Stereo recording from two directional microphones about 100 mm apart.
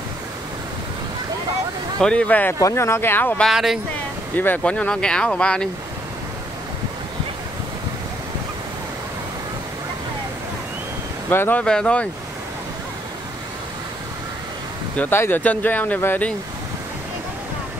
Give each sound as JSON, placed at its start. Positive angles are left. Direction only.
{"t": 2.0, "sound": "speech", "side_deg": 10}
{"t": 2.6, "sound": "speech", "side_deg": 25}
{"t": 3.3, "sound": "speech", "side_deg": 0}
{"t": 4.4, "sound": "speech", "side_deg": 15}
{"t": 11.2, "sound": "speech", "side_deg": 20}
{"t": 15.0, "sound": "speech", "side_deg": 20}